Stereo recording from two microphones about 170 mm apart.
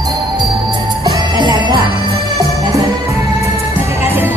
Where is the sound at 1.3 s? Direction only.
25° right (ahead or behind).